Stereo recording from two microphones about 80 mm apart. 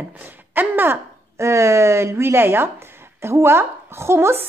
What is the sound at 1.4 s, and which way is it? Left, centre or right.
Speech, right.